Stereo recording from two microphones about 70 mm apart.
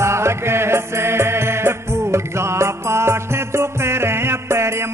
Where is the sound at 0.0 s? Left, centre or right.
Right.